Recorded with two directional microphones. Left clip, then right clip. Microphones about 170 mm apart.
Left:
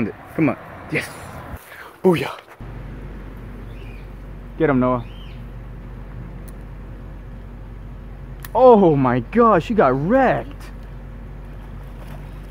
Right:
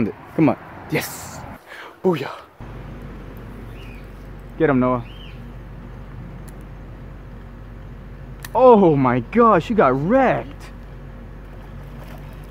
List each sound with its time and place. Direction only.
0.0 s speech: 20° right (ahead or behind)
2.0 s speech: 20° left (ahead or behind)
4.6 s speech: centre (ahead or behind)
8.5 s speech: centre (ahead or behind)